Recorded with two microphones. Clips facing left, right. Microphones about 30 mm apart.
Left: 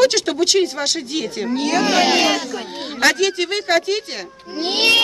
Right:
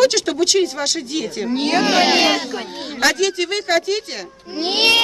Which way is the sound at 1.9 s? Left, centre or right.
Centre.